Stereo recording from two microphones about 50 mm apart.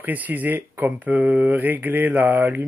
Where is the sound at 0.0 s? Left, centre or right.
Right.